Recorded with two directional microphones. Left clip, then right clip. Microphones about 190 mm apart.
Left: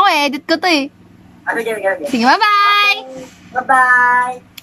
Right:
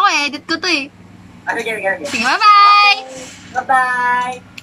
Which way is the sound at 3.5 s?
5° right (ahead or behind).